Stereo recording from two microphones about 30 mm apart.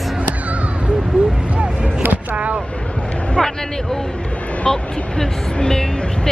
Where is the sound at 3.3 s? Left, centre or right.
Centre.